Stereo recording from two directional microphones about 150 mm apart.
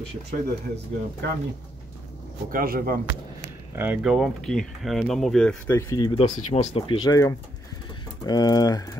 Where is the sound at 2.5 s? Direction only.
80° right.